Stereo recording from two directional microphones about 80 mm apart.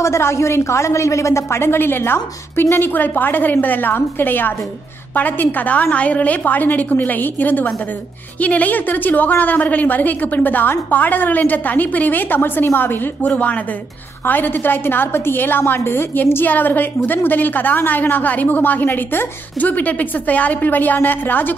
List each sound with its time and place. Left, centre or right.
0.0 s a woman's voice: left